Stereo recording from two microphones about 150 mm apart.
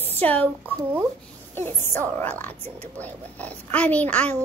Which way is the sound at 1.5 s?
15° left (ahead or behind).